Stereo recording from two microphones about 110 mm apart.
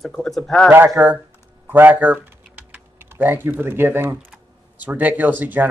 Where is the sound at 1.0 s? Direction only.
15° right (ahead or behind).